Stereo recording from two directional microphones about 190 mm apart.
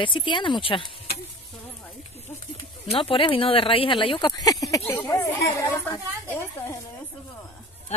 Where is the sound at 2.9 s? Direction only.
30° left (ahead or behind).